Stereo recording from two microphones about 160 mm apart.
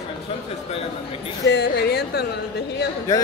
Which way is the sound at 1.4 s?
90° left.